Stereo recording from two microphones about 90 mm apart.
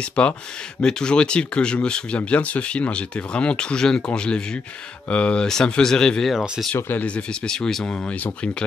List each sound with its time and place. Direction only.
0.2 s speech: 15° left (ahead or behind)
6.7 s speech: 20° left (ahead or behind)
7.4 s speech: 5° left (ahead or behind)